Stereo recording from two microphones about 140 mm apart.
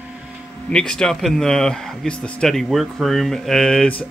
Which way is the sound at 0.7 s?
5° left (ahead or behind).